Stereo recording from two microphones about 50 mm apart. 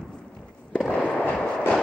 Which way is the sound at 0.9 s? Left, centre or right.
Left.